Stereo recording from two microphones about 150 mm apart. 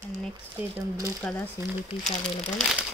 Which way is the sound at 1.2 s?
5° left (ahead or behind).